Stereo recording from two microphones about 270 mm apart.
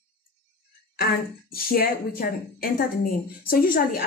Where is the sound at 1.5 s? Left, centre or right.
Left.